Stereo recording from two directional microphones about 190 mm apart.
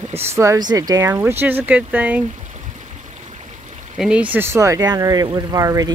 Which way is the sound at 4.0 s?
5° right (ahead or behind).